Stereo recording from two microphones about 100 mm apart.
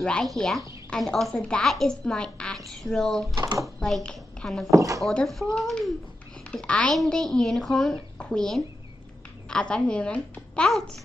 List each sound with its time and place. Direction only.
0.0 s a woman's voice: 5° left (ahead or behind)
3.3 s speech: 40° right (ahead or behind)
3.6 s a woman's voice: 5° left (ahead or behind)
4.6 s speech: 30° right (ahead or behind)
5.0 s a woman's voice: centre (ahead or behind)